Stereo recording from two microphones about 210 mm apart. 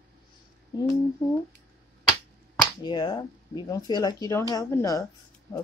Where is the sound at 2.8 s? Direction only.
20° left (ahead or behind).